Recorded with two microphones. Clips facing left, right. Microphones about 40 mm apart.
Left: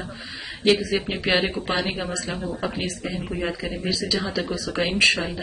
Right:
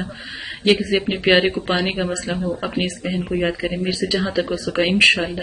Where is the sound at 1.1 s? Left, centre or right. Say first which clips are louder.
Right 8 dB; right.